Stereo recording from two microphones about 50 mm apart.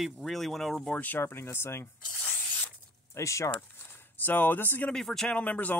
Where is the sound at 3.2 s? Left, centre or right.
Left.